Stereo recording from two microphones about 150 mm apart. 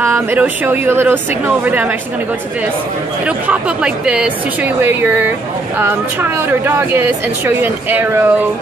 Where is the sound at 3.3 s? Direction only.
10° right (ahead or behind).